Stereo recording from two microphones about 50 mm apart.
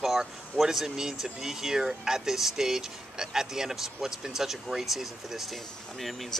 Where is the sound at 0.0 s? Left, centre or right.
Centre.